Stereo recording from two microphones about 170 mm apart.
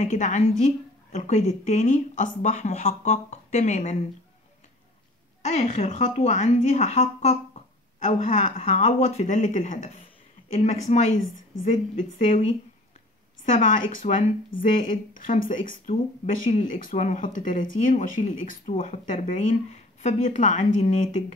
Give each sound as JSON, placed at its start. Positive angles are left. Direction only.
{"t": 0.0, "sound": "a woman's voice", "side_deg": 45}
{"t": 3.1, "sound": "speech", "side_deg": 40}
{"t": 5.5, "sound": "a woman's voice", "side_deg": 45}
{"t": 13.6, "sound": "a woman's voice", "side_deg": 50}